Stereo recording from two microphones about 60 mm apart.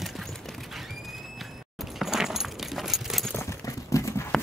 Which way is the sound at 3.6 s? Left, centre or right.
Left.